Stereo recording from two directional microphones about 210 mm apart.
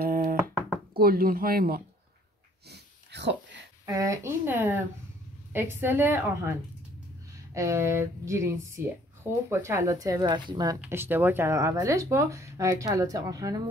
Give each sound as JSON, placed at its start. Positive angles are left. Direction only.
{"t": 0.0, "sound": "knock", "side_deg": -45}
{"t": 0.9, "sound": "speech", "side_deg": -45}
{"t": 2.7, "sound": "a sound", "side_deg": -55}
{"t": 3.8, "sound": "speech", "side_deg": -15}
{"t": 7.5, "sound": "speech", "side_deg": -15}